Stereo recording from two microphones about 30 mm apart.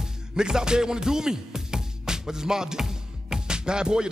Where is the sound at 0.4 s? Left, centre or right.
Right.